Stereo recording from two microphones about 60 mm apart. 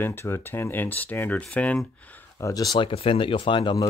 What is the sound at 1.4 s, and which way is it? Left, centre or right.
Speech, left.